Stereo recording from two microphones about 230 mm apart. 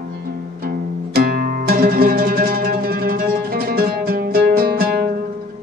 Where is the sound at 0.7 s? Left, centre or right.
Right.